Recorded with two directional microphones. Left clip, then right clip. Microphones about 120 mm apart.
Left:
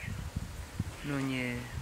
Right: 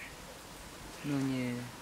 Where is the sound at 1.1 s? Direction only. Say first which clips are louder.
Left 1 dB; 30° left (ahead or behind).